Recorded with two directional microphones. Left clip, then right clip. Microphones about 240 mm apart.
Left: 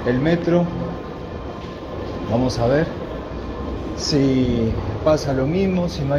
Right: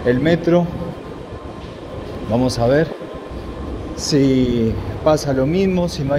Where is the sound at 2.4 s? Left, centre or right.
Right.